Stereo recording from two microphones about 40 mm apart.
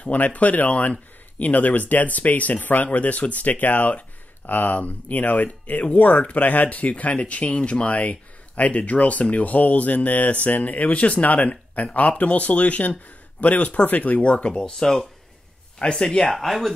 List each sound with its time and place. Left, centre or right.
0.0 s speech: left
14.2 s speech: left
14.5 s speech: centre
16.3 s speech: centre